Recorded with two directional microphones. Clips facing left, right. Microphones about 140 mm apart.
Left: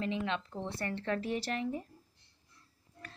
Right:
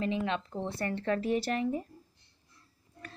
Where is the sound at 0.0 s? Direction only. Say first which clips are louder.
Right 3 dB; 40° right (ahead or behind).